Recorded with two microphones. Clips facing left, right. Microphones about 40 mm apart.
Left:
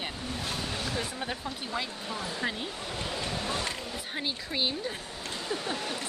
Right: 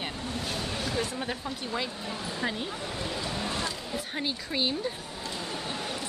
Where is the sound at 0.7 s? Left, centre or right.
Centre.